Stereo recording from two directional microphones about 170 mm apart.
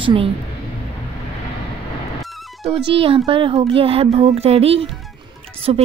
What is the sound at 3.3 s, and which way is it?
Speech, 30° right (ahead or behind).